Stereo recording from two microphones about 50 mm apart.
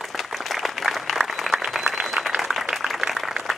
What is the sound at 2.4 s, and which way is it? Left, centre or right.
Applause, centre.